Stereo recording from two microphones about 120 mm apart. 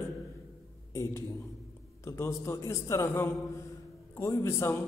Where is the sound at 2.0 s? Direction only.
20° left (ahead or behind).